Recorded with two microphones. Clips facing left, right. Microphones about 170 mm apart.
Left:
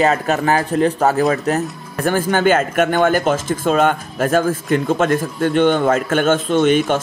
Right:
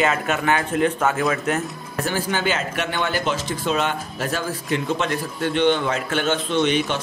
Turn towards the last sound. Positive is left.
turn(degrees=50)  # may be behind; listen again after turning